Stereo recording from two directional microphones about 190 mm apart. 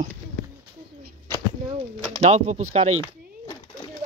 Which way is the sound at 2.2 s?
35° right (ahead or behind).